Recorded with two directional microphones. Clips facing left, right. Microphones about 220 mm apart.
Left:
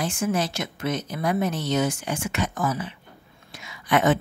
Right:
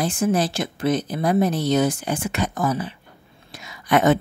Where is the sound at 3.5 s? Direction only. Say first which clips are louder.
Right 3 dB; 40° right (ahead or behind).